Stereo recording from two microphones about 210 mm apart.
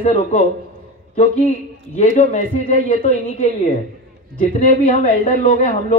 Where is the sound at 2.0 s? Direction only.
35° left (ahead or behind).